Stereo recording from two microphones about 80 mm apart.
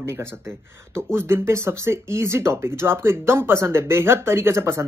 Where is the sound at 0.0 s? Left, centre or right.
Right.